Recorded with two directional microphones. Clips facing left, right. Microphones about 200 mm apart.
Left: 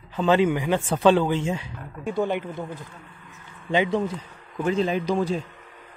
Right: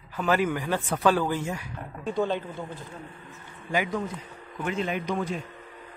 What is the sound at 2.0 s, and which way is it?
A man's voice, 15° left (ahead or behind).